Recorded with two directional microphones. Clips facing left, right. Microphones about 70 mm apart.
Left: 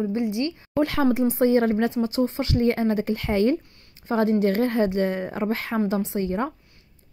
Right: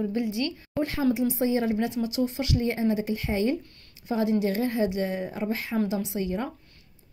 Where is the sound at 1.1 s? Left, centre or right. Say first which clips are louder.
Left 4 dB; left.